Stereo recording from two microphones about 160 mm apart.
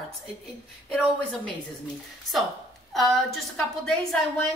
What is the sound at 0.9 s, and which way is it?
Speech, 5° left (ahead or behind).